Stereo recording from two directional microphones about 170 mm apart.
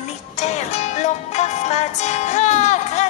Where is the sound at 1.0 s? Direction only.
40° left (ahead or behind).